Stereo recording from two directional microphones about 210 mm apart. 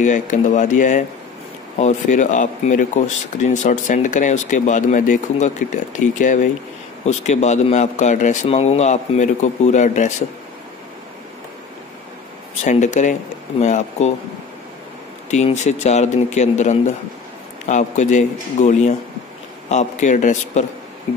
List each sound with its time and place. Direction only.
0.0 s a man's voice: 35° left (ahead or behind)
12.6 s a man's voice: 35° left (ahead or behind)
15.3 s a man's voice: 35° left (ahead or behind)